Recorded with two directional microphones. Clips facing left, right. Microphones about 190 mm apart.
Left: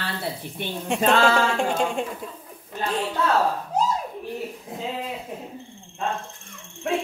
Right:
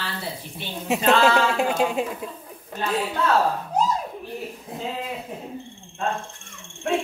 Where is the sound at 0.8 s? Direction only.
5° right (ahead or behind).